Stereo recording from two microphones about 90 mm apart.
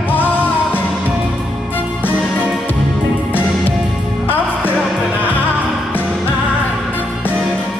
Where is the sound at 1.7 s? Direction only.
20° left (ahead or behind).